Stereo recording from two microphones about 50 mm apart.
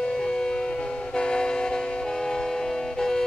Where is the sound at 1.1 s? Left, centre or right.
Centre.